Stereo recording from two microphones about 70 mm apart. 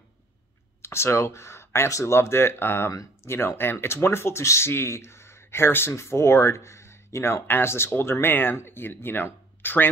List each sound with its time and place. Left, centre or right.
0.8 s speech: left